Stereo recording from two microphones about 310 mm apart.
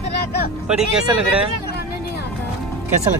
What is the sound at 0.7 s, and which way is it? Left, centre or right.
Speech, centre.